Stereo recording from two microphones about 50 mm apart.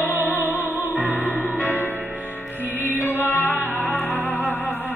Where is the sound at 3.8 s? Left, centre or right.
Left.